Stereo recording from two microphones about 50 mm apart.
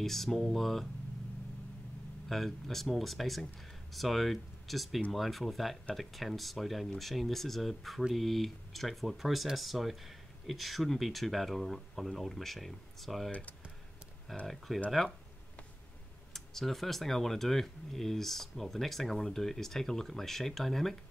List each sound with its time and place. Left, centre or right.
0.0 s speech: centre
2.2 s speech: centre
13.3 s speech: left
14.4 s speech: centre
16.3 s speech: centre